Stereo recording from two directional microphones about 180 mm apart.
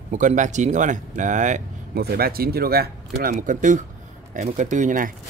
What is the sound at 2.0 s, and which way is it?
Speech, 55° right (ahead or behind).